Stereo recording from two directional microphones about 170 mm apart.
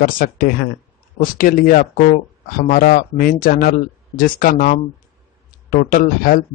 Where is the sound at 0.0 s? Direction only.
55° left (ahead or behind).